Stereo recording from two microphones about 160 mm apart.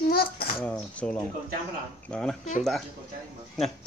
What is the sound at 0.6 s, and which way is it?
Speech, 10° left (ahead or behind).